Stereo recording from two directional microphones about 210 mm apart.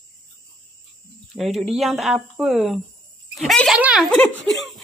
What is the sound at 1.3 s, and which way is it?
Speech, centre (ahead or behind).